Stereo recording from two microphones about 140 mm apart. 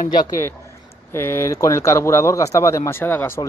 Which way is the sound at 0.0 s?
80° left.